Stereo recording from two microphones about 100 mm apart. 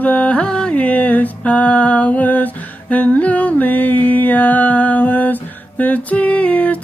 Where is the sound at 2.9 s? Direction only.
15° left (ahead or behind).